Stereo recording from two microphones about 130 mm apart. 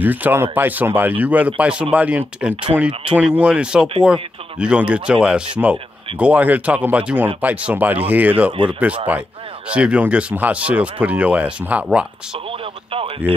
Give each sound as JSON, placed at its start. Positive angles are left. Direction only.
{"t": 0.0, "sound": "speech", "side_deg": -15}
{"t": 8.5, "sound": "speech", "side_deg": -40}
{"t": 9.1, "sound": "speech", "side_deg": -10}
{"t": 12.4, "sound": "radio", "side_deg": -45}